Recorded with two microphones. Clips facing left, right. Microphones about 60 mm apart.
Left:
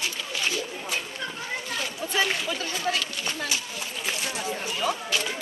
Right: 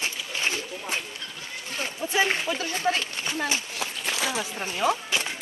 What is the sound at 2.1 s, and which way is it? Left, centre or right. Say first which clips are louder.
Speech: right 2 dB; right.